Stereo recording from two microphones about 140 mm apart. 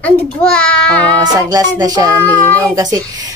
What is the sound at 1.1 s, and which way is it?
Speech, 25° right (ahead or behind).